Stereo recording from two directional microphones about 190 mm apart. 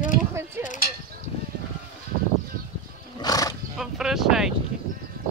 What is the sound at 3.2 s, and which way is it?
Wild animals, 20° left (ahead or behind).